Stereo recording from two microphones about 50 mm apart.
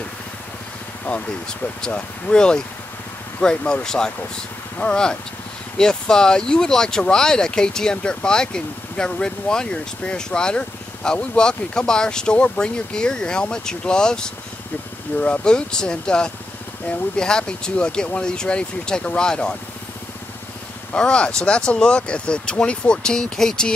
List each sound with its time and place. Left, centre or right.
1.9 s speech: left
20.9 s speech: centre